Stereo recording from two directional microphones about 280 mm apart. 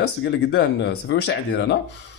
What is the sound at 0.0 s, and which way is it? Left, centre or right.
Speech, left.